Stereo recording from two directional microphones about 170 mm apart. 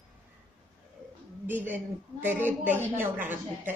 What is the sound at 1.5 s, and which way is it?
A woman's voice, 10° right (ahead or behind).